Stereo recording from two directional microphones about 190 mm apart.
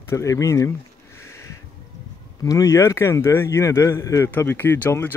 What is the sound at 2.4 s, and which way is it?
Speech, 15° left (ahead or behind).